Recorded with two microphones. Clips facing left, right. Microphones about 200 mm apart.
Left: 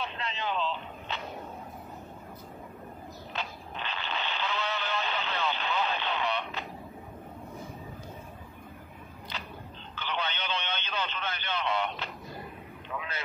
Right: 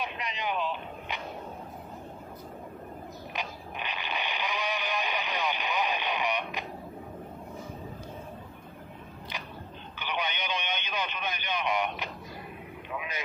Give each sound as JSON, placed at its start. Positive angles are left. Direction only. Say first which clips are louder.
{"t": 0.0, "sound": "a sound", "louder": "even", "side_deg": -15}
{"t": 3.3, "sound": "radio", "louder": "even", "side_deg": -15}
{"t": 9.3, "sound": "biting", "louder": "even", "side_deg": -15}
{"t": 9.9, "sound": "radio", "louder": "right 1 dB", "side_deg": -15}
{"t": 12.9, "sound": "vehicle", "louder": "right 1 dB", "side_deg": -15}